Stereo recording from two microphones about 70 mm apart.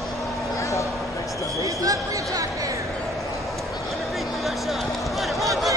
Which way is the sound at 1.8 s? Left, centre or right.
Right.